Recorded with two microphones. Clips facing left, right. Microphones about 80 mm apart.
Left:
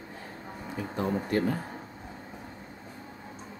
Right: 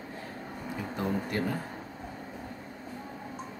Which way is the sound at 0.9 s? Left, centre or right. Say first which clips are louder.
Left 3 dB; left.